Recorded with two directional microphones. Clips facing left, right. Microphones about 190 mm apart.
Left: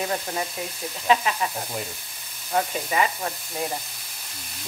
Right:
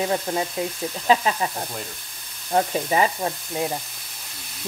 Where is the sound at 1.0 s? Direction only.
35° right (ahead or behind).